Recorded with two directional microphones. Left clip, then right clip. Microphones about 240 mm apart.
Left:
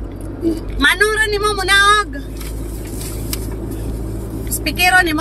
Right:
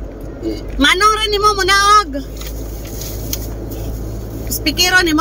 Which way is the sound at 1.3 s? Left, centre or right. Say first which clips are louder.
Right 2 dB; centre.